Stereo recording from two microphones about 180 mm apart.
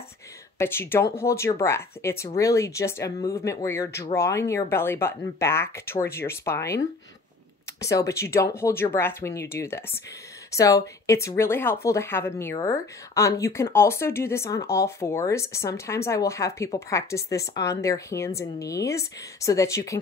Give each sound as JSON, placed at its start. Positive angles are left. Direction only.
{"t": 0.6, "sound": "speech", "side_deg": 15}
{"t": 7.8, "sound": "speech", "side_deg": 15}